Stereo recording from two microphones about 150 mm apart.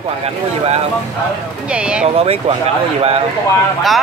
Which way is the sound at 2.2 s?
40° right (ahead or behind).